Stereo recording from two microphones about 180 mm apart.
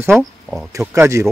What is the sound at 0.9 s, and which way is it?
Speech, 15° right (ahead or behind).